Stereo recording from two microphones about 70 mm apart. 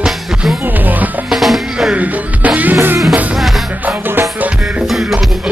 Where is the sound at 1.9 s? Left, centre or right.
Right.